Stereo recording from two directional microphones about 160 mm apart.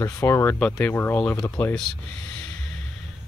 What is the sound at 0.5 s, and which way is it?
Speech, 5° left (ahead or behind).